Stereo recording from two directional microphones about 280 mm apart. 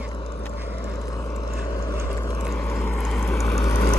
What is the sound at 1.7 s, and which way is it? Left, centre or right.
Vehicle, centre.